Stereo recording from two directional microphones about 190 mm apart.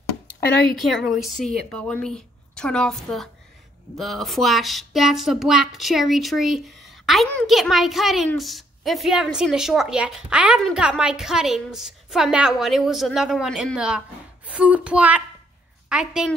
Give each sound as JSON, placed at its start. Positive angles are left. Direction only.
{"t": 0.7, "sound": "a woman's voice", "side_deg": 0}